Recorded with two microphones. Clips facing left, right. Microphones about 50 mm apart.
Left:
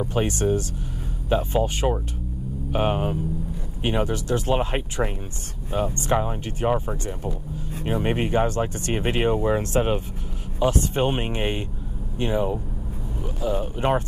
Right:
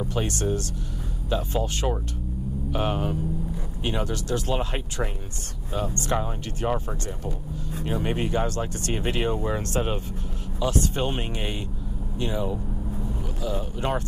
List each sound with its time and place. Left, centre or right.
0.1 s speech: left
7.8 s speech: left